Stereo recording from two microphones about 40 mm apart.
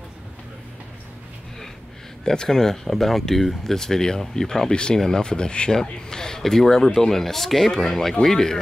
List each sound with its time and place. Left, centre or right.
2.2 s speech: centre